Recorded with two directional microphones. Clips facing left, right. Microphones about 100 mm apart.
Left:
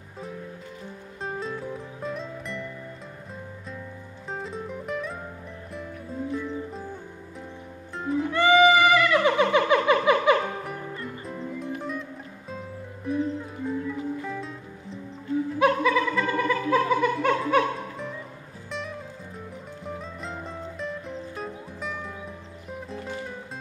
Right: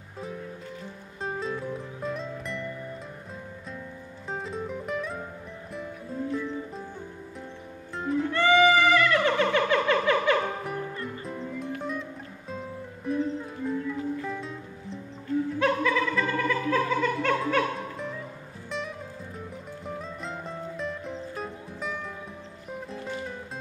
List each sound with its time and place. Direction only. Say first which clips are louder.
1.2 s music: right 1 dB; centre (ahead or behind)
4.3 s music: right 1 dB; centre (ahead or behind)
6.3 s music: left 1 dB; centre (ahead or behind)
7.9 s music: left 1 dB; centre (ahead or behind)
8.3 s music: left 3 dB; 15° left (ahead or behind)
11.2 s music: left 3 dB; centre (ahead or behind)
15.6 s music: left 5 dB; 15° left (ahead or behind)
16.6 s laughter: left 5 dB; 15° left (ahead or behind)
18.7 s music: even; centre (ahead or behind)